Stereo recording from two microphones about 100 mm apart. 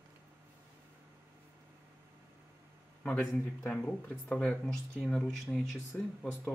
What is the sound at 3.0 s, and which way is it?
Speech, 10° left (ahead or behind).